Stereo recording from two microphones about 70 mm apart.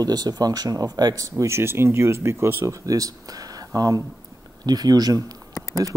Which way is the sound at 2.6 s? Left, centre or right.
Right.